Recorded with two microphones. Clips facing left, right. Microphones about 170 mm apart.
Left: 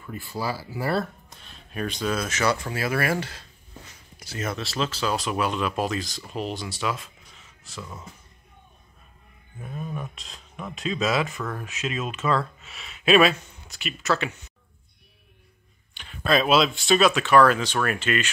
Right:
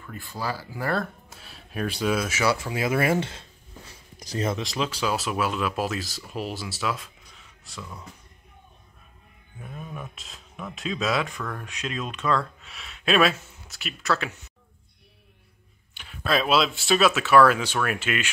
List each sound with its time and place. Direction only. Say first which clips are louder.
0.0 s speech: left 2 dB; 10° left (ahead or behind)
1.3 s speech: right 1 dB; 5° right (ahead or behind)
2.7 s speech: right 2 dB; 20° right (ahead or behind)
4.2 s a sound: right 4 dB; 40° right (ahead or behind)
4.5 s speech: left 1 dB; 15° right (ahead or behind); by 8.0 s centre (ahead or behind)
9.6 s speech: left 4 dB; centre (ahead or behind)
15.9 s speech: left 3 dB; 5° right (ahead or behind)